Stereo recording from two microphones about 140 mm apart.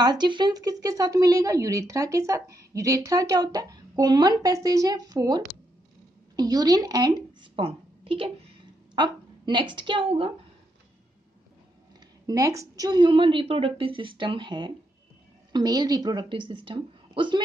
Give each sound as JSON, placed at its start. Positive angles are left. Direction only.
{"t": 0.0, "sound": "speech", "side_deg": -30}
{"t": 7.5, "sound": "a sound", "side_deg": -40}
{"t": 8.9, "sound": "a woman's voice", "side_deg": -35}
{"t": 12.3, "sound": "a woman's voice", "side_deg": -25}